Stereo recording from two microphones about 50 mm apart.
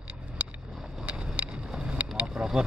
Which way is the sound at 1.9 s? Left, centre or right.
Right.